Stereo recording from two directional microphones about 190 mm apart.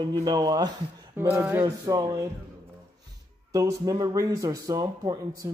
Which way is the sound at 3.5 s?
20° right (ahead or behind).